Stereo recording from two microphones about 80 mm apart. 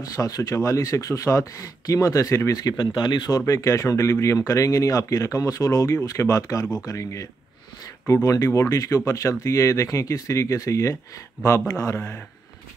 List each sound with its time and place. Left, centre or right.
0.0 s speech: left
2.8 s speech: left
3.3 s speech: left